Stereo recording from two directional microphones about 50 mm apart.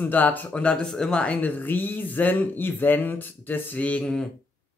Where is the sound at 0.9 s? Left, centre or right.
Centre.